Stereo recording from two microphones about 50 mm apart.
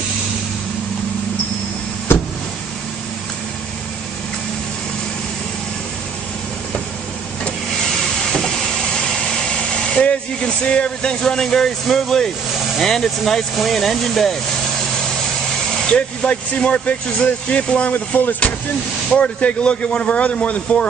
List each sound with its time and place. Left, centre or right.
9.0 s speech: centre
15.9 s speech: left
19.1 s speech: left